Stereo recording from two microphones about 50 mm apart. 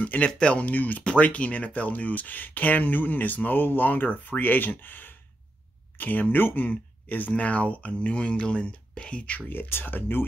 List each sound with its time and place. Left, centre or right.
0.0 s speech: left
9.5 s speech: left